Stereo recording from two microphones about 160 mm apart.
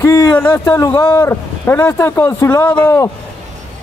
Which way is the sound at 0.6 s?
20° left (ahead or behind).